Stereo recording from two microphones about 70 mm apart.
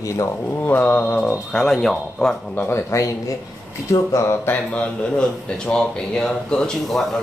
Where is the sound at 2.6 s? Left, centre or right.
Left.